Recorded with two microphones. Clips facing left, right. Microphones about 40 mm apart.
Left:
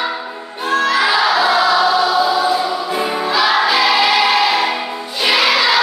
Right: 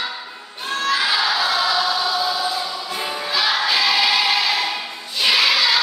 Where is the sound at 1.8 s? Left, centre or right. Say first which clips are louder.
Left 7 dB; left.